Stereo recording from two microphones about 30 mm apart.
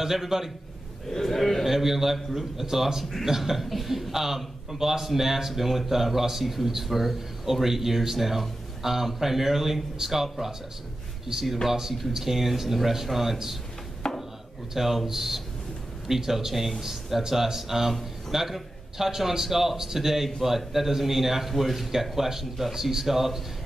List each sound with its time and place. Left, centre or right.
0.0 s speech: centre
1.1 s a man's voice: centre
1.6 s a man's voice: centre
11.3 s speech: centre
12.2 s speech: centre
14.0 s a sound: centre
14.7 s speech: centre